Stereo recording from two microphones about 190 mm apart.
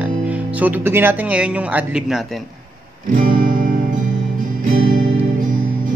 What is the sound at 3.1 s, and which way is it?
Music, 45° right (ahead or behind).